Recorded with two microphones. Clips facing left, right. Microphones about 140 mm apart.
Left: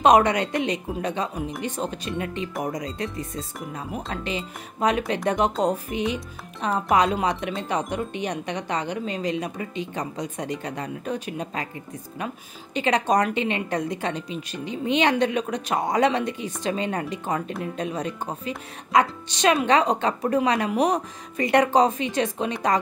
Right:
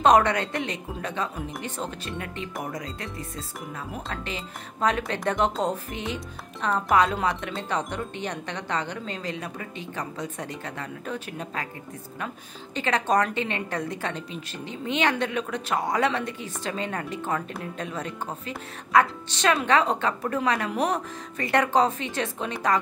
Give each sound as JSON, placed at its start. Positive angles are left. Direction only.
{"t": 0.0, "sound": "speech", "side_deg": 15}
{"t": 12.7, "sound": "speech", "side_deg": 15}